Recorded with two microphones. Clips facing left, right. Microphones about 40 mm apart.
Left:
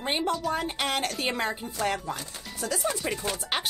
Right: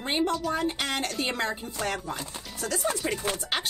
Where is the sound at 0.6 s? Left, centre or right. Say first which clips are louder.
Even; centre.